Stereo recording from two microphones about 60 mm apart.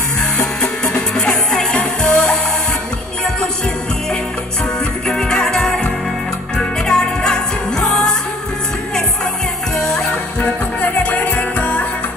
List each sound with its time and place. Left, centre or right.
0.4 s music: centre
1.8 s music: left
5.0 s music: centre
10.4 s music: left